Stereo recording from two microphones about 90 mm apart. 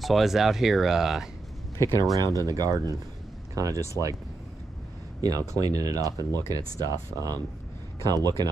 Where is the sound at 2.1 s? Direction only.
40° right (ahead or behind).